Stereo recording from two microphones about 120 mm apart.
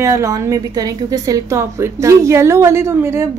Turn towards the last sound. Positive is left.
turn(degrees=-20)  # may be behind; listen again after turning